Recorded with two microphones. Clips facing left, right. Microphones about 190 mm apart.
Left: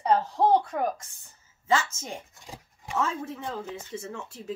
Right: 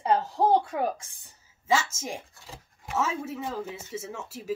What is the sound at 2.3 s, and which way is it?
Speech, 15° left (ahead or behind).